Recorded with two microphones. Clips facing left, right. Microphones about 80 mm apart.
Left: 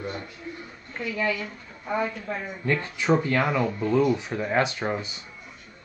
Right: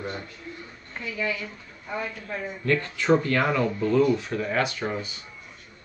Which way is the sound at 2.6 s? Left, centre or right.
Centre.